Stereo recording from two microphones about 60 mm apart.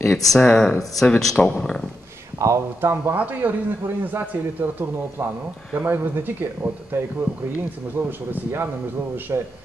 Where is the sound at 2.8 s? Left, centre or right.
Right.